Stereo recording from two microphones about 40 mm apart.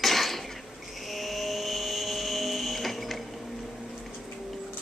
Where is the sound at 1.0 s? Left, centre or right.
Centre.